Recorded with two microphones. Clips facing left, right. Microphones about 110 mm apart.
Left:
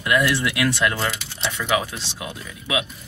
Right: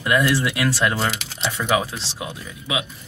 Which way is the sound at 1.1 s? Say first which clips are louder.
Right 2 dB; 90° right.